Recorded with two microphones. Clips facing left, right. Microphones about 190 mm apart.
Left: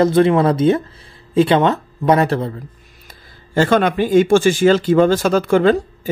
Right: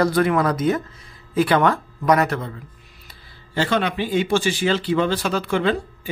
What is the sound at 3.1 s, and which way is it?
Speech, 50° left (ahead or behind).